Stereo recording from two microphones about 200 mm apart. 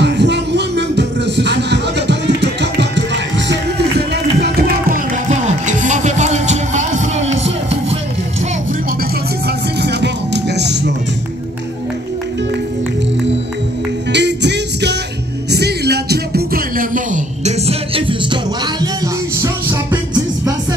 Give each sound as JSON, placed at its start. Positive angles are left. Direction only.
{"t": 0.0, "sound": "music", "side_deg": -60}
{"t": 9.8, "sound": "music", "side_deg": -60}
{"t": 14.1, "sound": "music", "side_deg": -60}
{"t": 19.4, "sound": "music", "side_deg": -15}